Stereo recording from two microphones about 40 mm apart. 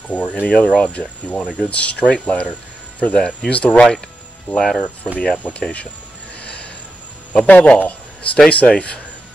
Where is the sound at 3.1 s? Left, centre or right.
Centre.